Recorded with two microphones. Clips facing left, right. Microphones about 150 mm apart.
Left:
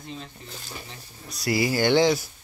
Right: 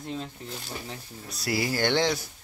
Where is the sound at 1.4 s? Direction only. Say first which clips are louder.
Left 4 dB; centre (ahead or behind).